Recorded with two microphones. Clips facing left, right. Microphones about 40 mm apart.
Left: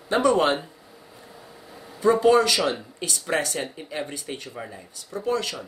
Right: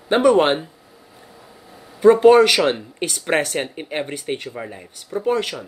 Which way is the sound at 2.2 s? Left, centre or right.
Right.